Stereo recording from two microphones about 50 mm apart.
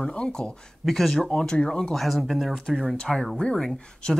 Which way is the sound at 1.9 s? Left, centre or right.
Centre.